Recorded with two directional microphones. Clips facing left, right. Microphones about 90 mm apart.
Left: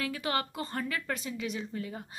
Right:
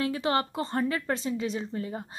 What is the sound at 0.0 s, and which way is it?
A woman's voice, 25° right (ahead or behind).